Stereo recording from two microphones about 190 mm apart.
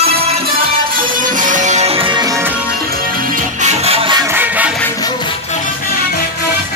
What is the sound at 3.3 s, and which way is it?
Music, 35° right (ahead or behind).